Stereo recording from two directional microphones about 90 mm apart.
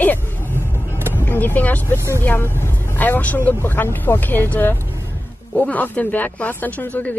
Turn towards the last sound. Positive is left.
turn(degrees=15)  # may be behind; listen again after turning